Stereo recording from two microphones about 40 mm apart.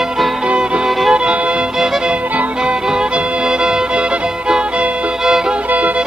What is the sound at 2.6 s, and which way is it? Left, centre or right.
Music, right.